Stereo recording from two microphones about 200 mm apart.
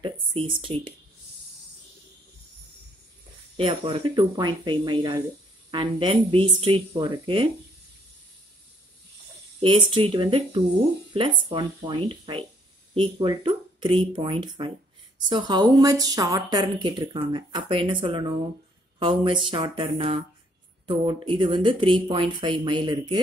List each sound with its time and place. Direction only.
0.0 s a sound: 30° right (ahead or behind)
0.6 s speech: 25° right (ahead or behind)
3.5 s speech: 25° right (ahead or behind)
9.6 s speech: 25° right (ahead or behind)